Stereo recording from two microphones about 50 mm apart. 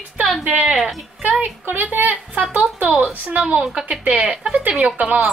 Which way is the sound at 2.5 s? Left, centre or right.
Right.